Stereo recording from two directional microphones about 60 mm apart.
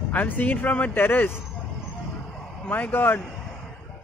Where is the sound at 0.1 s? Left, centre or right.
Left.